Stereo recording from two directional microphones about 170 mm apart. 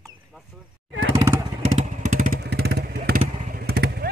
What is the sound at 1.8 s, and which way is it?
Motorcycle, 45° right (ahead or behind).